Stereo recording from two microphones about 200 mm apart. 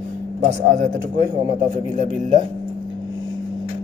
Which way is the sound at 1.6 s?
40° right (ahead or behind).